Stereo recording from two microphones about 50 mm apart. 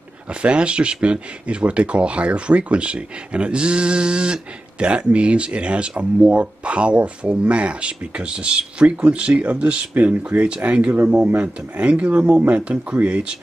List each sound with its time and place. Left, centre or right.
0.3 s speech: right